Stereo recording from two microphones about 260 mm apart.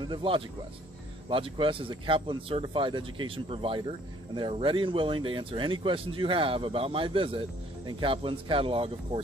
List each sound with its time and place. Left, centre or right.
0.0 s speech: centre